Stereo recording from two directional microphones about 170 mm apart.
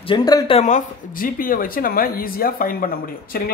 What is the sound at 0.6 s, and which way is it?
A woman's voice, 45° left (ahead or behind).